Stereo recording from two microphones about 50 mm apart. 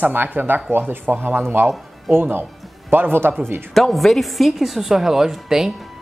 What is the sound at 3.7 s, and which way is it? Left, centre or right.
A woman's voice, centre.